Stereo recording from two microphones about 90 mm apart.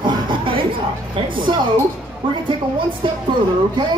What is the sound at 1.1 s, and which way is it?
Speech, 65° right (ahead or behind).